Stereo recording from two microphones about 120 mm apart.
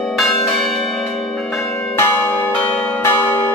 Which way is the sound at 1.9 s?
20° left (ahead or behind).